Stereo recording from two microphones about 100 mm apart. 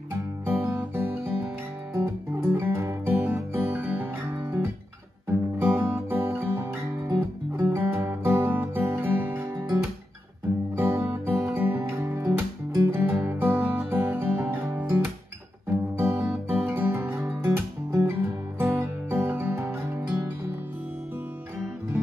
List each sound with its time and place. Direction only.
0.1 s music: 25° right (ahead or behind)
5.6 s guitar: 25° right (ahead or behind)
10.8 s music: 25° right (ahead or behind)
16.0 s music: 20° right (ahead or behind)